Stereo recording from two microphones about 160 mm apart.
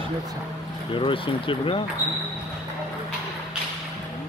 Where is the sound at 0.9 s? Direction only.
35° left (ahead or behind).